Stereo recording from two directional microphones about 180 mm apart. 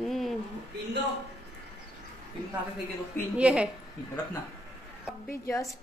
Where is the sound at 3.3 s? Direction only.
5° right (ahead or behind).